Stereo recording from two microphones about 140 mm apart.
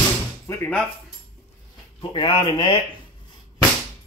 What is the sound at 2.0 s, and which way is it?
Speech, 40° left (ahead or behind).